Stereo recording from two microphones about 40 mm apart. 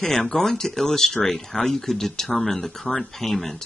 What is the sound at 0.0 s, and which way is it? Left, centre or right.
Speech, centre.